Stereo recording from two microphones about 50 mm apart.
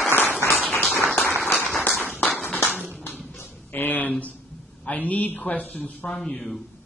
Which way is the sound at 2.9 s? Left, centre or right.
Left.